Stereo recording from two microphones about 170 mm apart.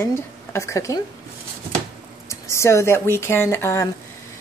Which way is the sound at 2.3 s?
15° left (ahead or behind).